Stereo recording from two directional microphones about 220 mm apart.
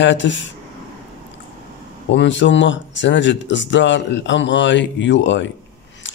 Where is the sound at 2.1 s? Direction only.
55° left (ahead or behind).